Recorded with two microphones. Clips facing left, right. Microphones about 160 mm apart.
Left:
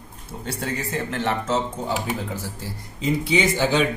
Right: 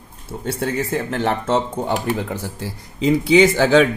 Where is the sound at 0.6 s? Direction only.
55° right (ahead or behind).